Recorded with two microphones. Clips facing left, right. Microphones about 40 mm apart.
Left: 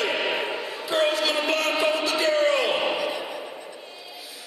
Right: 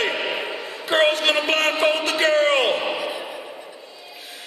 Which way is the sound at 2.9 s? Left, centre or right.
Centre.